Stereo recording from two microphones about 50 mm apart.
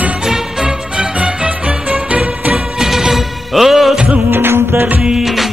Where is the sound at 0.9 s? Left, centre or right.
Right.